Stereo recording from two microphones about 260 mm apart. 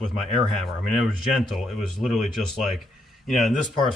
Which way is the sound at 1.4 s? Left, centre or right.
Centre.